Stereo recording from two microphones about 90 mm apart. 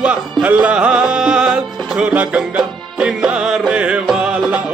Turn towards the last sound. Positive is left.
turn(degrees=-15)  # may be behind; listen again after turning